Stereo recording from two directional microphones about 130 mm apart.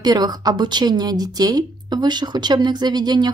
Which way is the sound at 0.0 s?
30° right (ahead or behind).